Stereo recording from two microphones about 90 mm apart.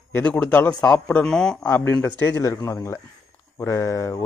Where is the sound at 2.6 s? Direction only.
35° left (ahead or behind).